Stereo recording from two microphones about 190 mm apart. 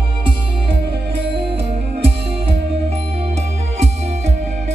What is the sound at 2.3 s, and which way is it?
Music, 30° right (ahead or behind).